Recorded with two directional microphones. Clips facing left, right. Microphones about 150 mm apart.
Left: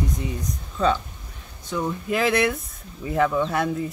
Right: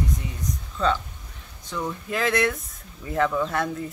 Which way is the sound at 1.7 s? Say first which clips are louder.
Left 4 dB; 15° left (ahead or behind).